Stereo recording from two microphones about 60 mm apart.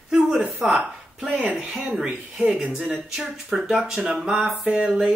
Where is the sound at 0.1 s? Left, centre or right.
Centre.